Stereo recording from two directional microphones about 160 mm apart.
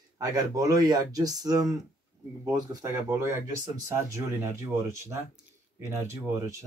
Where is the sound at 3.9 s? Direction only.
20° right (ahead or behind).